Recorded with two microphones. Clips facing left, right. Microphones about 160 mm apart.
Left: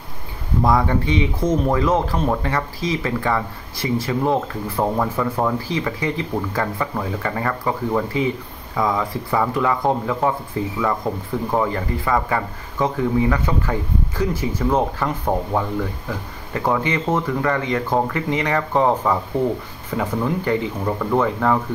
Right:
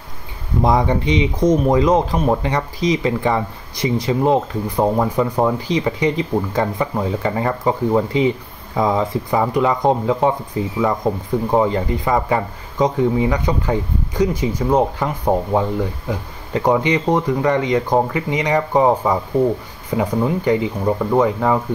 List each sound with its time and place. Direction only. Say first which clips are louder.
0.6 s speech: right 2 dB; 20° right (ahead or behind)